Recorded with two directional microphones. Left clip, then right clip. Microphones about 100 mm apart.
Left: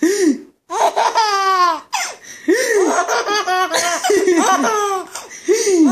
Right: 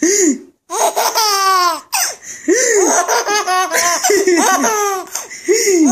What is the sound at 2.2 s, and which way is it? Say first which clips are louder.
Laughter: right 1 dB; 65° right (ahead or behind).